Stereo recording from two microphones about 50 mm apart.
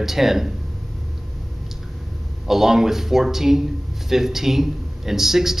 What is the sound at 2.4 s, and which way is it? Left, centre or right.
A man's voice, centre.